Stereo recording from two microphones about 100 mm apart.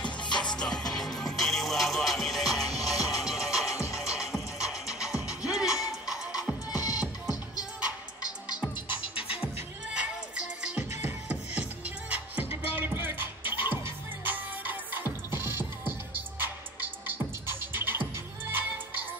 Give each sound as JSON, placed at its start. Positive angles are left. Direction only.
{"t": 0.0, "sound": "music", "side_deg": 50}
{"t": 0.5, "sound": "music", "side_deg": 10}
{"t": 3.7, "sound": "music", "side_deg": 30}
{"t": 4.0, "sound": "music", "side_deg": -5}
{"t": 6.7, "sound": "music", "side_deg": 40}
{"t": 9.9, "sound": "music", "side_deg": -10}
{"t": 10.8, "sound": "music", "side_deg": -20}